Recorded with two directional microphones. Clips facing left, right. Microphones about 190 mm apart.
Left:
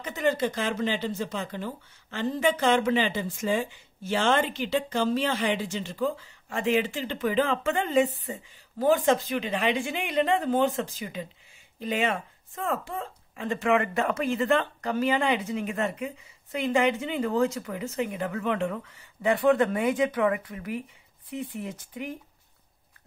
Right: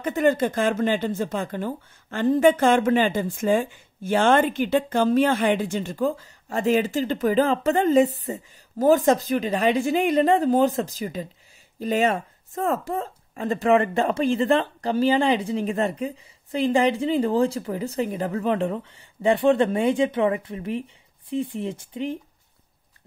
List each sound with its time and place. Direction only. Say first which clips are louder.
0.0 s speech: right 6 dB; 50° right (ahead or behind); by 22.2 s 25° right (ahead or behind)